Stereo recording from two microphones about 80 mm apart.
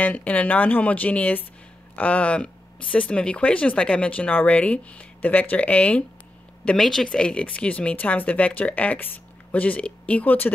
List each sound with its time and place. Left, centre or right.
0.0 s speech: centre